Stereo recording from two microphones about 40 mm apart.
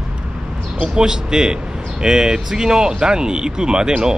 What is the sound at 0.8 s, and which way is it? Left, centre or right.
Speech, centre.